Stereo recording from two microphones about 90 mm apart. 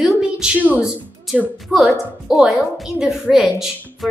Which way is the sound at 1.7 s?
Centre (ahead or behind).